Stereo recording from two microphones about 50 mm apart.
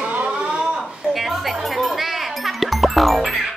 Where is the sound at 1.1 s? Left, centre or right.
Centre.